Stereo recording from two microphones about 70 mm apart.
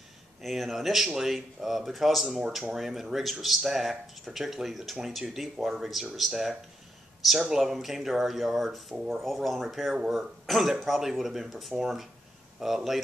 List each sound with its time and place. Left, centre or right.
0.4 s speech: centre